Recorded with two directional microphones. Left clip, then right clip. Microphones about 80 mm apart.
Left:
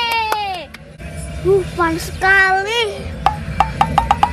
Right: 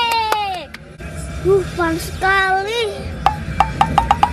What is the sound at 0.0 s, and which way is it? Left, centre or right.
Baby cry, centre.